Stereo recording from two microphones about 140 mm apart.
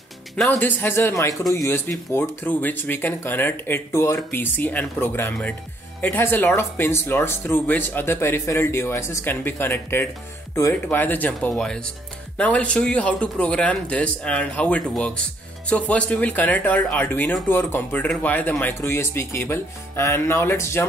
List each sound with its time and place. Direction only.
0.6 s speech: 15° left (ahead or behind)